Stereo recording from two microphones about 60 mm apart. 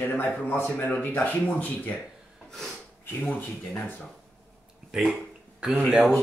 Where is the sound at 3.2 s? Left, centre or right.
Left.